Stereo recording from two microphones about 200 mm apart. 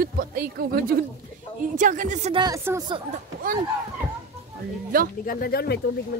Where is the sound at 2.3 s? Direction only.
20° right (ahead or behind).